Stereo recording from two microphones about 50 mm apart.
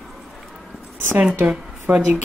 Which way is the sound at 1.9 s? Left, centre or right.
Right.